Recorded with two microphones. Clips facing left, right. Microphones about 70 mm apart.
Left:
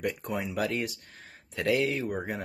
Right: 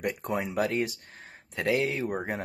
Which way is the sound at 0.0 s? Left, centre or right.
Right.